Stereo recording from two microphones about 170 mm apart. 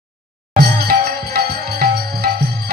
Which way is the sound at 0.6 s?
65° right (ahead or behind).